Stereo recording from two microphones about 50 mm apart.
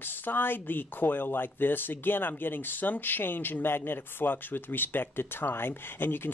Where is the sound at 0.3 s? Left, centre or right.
Left.